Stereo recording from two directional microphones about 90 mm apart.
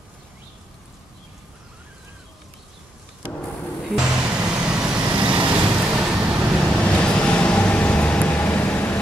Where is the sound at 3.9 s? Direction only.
10° right (ahead or behind).